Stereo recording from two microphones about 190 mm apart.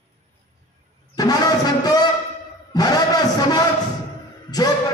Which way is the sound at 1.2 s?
20° left (ahead or behind).